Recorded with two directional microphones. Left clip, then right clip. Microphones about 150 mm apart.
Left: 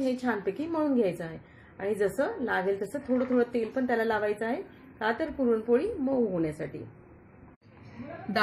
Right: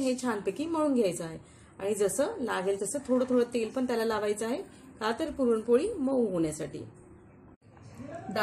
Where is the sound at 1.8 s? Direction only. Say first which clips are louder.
Even; 5° left (ahead or behind).